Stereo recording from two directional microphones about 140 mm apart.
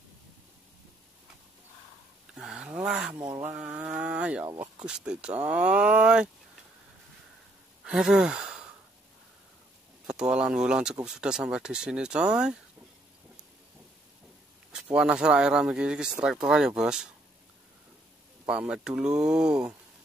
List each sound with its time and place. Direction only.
2.3 s speech: 5° right (ahead or behind)
3.3 s speech: 25° right (ahead or behind)
3.5 s livestock: 5° right (ahead or behind)
4.8 s speech: 5° right (ahead or behind)
7.8 s sigh: 5° right (ahead or behind)
10.0 s speech: 5° right (ahead or behind)
14.7 s speech: 5° right (ahead or behind)
18.5 s speech: 5° right (ahead or behind)